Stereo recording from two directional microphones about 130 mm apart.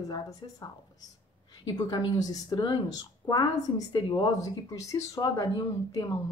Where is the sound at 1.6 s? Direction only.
30° left (ahead or behind).